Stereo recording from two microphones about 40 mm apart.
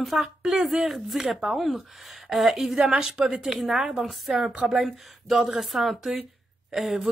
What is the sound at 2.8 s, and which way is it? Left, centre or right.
Speech, centre.